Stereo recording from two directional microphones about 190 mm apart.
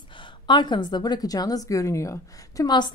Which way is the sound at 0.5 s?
25° left (ahead or behind).